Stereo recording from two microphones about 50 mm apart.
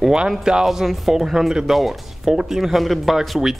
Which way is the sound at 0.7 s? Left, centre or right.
Centre.